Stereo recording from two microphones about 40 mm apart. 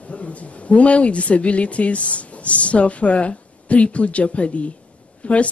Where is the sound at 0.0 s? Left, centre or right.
Left.